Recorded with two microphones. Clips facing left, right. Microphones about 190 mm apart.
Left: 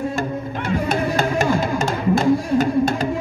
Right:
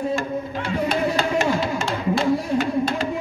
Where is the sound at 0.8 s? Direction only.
45° left (ahead or behind).